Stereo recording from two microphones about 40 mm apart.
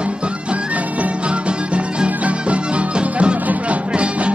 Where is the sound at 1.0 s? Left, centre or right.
Right.